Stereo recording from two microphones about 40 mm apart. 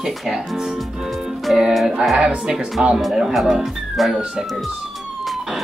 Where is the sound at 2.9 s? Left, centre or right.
Centre.